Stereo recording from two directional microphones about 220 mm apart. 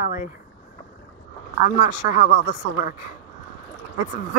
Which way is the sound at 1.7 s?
35° left (ahead or behind).